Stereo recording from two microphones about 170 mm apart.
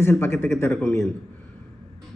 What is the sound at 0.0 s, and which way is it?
A man's voice, 15° left (ahead or behind).